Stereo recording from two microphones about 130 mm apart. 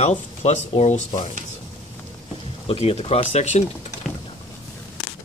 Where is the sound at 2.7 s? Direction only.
50° left (ahead or behind).